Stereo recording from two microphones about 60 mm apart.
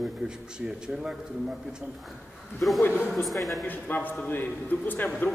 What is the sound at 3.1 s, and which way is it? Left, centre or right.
Speech, centre.